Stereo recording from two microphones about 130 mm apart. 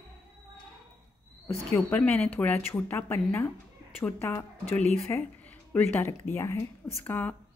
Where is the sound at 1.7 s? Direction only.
10° left (ahead or behind).